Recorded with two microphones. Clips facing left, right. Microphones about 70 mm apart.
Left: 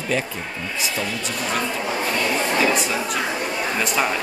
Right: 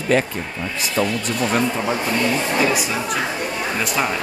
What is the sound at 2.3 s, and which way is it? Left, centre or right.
Speech, centre.